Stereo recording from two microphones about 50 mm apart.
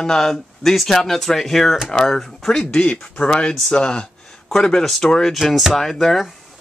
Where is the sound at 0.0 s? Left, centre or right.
Centre.